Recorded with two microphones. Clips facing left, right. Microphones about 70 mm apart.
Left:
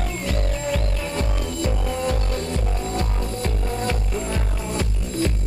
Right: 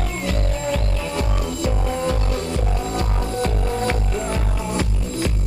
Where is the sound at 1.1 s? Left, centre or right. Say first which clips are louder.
Right 3 dB; centre.